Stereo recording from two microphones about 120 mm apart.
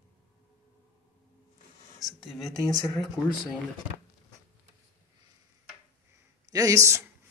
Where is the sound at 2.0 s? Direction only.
Centre (ahead or behind).